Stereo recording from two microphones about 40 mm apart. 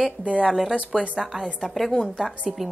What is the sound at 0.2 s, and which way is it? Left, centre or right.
Speech, right.